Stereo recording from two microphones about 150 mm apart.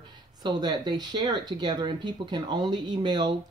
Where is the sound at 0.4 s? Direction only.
30° right (ahead or behind).